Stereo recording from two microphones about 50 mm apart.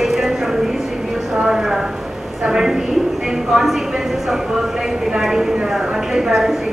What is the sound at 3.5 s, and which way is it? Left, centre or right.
Speech, centre.